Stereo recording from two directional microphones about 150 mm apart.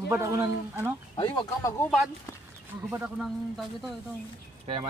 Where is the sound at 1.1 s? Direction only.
30° left (ahead or behind).